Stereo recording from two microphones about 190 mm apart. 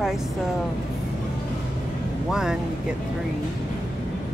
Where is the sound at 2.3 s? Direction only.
5° right (ahead or behind).